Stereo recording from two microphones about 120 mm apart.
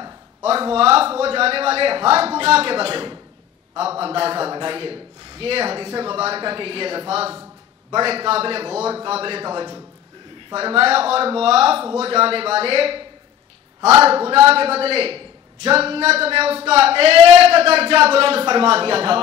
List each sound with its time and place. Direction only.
0.6 s a man's voice: 50° right (ahead or behind)
10.5 s a man's voice: 50° right (ahead or behind)